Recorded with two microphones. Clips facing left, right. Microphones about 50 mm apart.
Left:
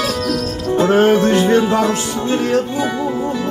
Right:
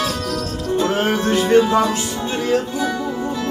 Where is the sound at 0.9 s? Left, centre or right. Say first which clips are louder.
Left 10 dB; left.